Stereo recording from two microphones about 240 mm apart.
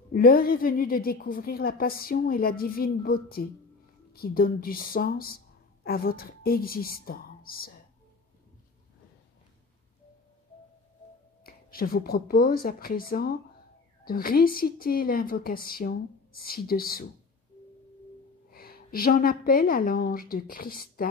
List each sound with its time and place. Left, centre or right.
0.1 s a woman's voice: left
11.4 s a woman's voice: left
18.5 s a woman's voice: left